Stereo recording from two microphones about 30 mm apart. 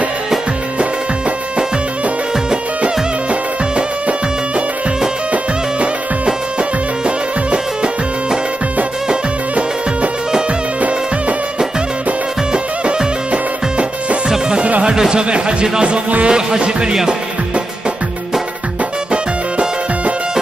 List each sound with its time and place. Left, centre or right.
7.5 s music: right
12.8 s music: right
14.9 s speech: right
16.3 s music: right